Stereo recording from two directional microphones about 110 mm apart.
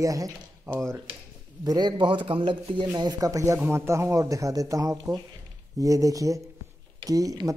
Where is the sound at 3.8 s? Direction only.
25° right (ahead or behind).